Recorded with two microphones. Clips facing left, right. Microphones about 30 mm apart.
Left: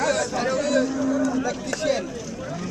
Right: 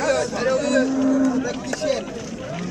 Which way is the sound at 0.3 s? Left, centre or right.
Centre.